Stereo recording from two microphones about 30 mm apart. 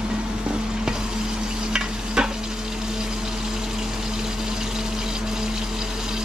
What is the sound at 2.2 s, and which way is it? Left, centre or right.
Frying, right.